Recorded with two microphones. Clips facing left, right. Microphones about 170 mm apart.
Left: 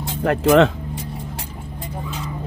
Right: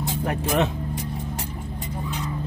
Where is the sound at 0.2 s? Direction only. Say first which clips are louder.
Left 10 dB; 75° left (ahead or behind).